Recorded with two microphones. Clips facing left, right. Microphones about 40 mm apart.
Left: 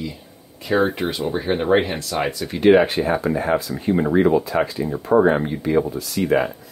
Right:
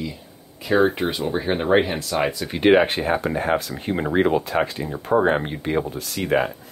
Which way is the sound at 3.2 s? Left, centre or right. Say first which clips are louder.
Left 2 dB; right.